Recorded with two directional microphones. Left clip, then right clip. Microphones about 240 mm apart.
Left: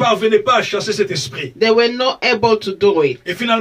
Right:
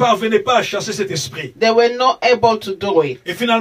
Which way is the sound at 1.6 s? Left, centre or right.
Left.